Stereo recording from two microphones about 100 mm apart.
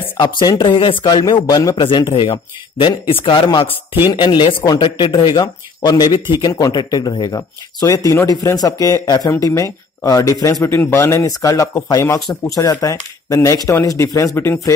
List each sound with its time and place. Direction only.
0.2 s speech: 50° left (ahead or behind)
1.8 s speech: 50° left (ahead or behind); by 14.7 s 25° left (ahead or behind)